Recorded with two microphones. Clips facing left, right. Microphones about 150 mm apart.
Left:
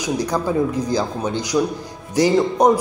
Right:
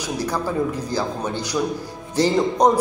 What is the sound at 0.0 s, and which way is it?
A man's voice, 15° left (ahead or behind).